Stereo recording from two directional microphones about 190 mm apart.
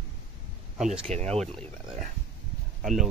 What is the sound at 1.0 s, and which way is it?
Speech, 35° right (ahead or behind).